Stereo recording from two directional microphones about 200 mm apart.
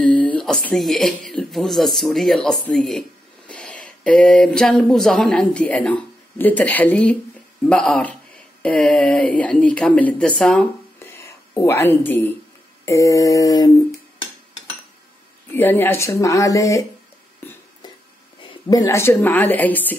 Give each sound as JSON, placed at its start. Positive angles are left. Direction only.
{"t": 0.0, "sound": "a sound", "side_deg": 5}
{"t": 0.7, "sound": "speech", "side_deg": 0}
{"t": 15.5, "sound": "speech", "side_deg": 10}
{"t": 18.4, "sound": "a woman's voice", "side_deg": 20}